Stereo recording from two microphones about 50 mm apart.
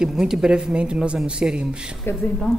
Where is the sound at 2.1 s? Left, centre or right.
Left.